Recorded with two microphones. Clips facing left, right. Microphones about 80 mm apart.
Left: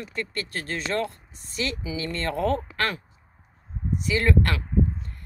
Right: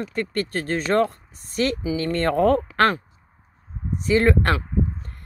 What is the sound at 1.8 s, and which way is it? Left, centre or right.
Speech, right.